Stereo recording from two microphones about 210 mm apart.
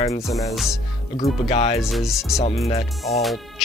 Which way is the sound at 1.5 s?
30° left (ahead or behind).